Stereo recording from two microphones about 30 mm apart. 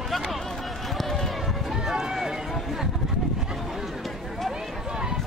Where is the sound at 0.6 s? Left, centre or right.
Centre.